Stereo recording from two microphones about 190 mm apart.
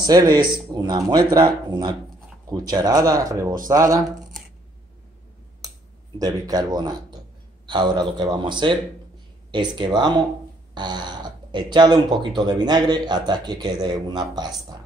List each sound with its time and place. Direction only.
0.0 s speech: 20° right (ahead or behind)
6.1 s speech: 20° right (ahead or behind)